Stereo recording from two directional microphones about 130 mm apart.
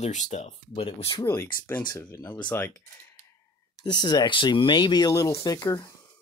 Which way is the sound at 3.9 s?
35° left (ahead or behind).